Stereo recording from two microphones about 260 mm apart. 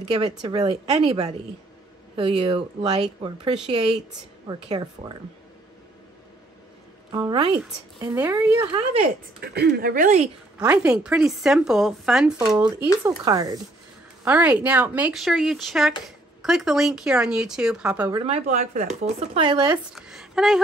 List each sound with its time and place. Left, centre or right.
0.0 s speech: right
7.1 s speech: centre
9.4 s speech: right
10.2 s a woman's voice: centre
13.2 s a woman's voice: centre
18.1 s speech: right
19.9 s a woman's voice: centre